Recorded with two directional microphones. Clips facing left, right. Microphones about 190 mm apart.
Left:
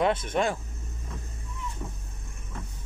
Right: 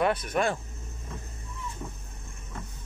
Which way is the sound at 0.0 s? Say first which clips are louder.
Left 1 dB; 25° left (ahead or behind).